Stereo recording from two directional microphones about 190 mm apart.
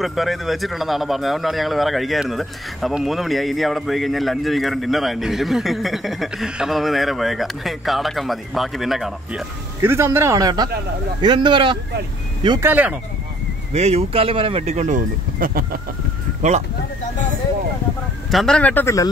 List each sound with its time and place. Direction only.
0.0 s speech: centre (ahead or behind)
9.8 s speech: 15° right (ahead or behind)
12.4 s speech: 10° right (ahead or behind)
13.7 s speech: 35° right (ahead or behind); by 15.8 s 50° right (ahead or behind)
18.3 s speech: centre (ahead or behind)